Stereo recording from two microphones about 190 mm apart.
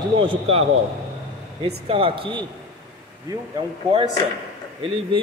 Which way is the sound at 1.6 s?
30° right (ahead or behind).